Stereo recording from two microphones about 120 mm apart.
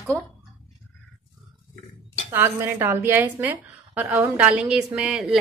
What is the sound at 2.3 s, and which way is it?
A woman's voice, 20° right (ahead or behind).